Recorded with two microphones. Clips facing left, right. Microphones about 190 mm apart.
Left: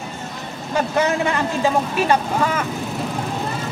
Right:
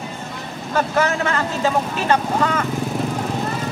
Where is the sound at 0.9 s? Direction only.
15° left (ahead or behind).